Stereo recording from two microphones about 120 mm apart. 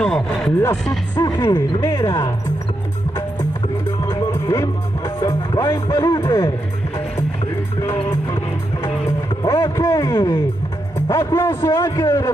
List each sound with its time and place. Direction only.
0.0 s speech: 5° left (ahead or behind)
1.1 s music: 35° left (ahead or behind)
9.4 s a man's voice: 30° left (ahead or behind)